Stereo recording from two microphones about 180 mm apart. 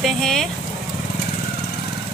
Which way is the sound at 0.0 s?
Centre (ahead or behind).